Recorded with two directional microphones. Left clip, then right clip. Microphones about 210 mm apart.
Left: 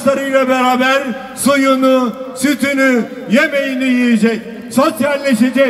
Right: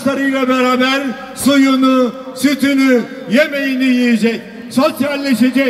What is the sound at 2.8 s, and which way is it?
A man's voice, 20° right (ahead or behind).